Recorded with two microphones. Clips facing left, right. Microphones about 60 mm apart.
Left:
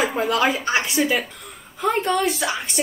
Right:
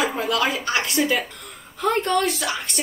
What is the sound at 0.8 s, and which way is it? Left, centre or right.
A woman's voice, centre.